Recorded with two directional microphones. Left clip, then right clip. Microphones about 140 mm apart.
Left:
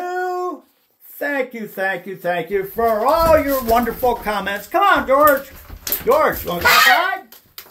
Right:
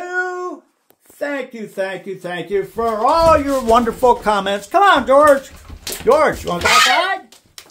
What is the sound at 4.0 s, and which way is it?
Speech, 60° right (ahead or behind).